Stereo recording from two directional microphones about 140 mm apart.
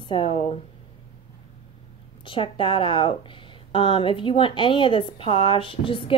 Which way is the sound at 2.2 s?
35° left (ahead or behind).